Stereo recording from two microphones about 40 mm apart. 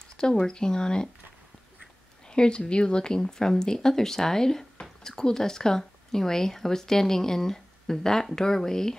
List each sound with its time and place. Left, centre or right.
0.2 s speech: centre
2.2 s speech: left